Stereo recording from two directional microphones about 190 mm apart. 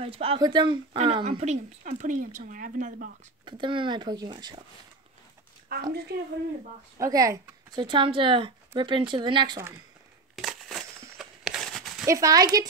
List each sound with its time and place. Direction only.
0.0 s a woman's voice: 30° right (ahead or behind); by 3.1 s 45° right (ahead or behind)
3.4 s a woman's voice: 25° right (ahead or behind)
5.7 s a woman's voice: 50° right (ahead or behind)
7.0 s a woman's voice: 20° right (ahead or behind)
10.3 s a sound: centre (ahead or behind)
12.1 s a woman's voice: 20° right (ahead or behind)